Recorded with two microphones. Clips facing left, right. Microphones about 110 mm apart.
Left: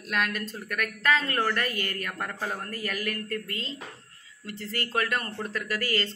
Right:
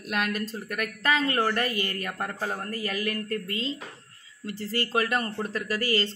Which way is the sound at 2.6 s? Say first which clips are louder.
Right 2 dB; 20° right (ahead or behind).